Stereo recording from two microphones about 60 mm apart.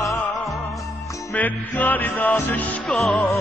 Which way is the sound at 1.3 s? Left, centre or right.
Left.